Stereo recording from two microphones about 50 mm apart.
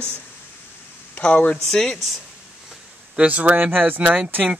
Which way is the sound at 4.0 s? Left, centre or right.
Right.